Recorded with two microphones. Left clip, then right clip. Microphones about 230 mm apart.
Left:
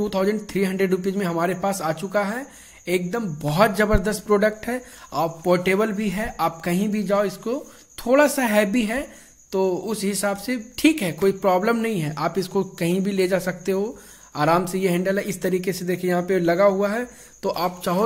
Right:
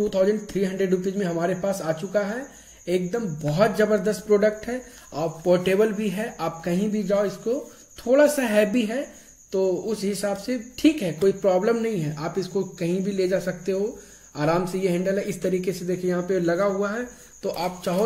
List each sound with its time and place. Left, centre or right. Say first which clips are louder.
0.0 s speech: right 1 dB; left